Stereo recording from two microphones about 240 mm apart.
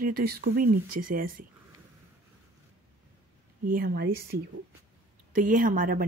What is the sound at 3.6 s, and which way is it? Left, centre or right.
Speech, right.